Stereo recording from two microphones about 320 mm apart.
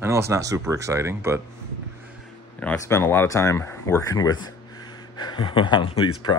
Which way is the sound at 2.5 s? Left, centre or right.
Centre.